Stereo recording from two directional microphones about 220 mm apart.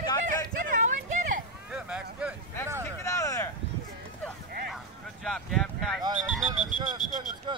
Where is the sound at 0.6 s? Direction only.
35° right (ahead or behind).